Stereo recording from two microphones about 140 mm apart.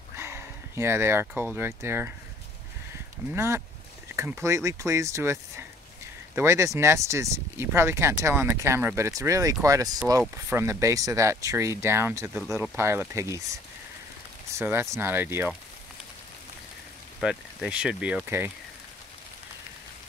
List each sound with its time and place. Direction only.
0.1 s speech: 20° right (ahead or behind)
3.3 s speech: 20° right (ahead or behind)
17.2 s speech: 5° right (ahead or behind)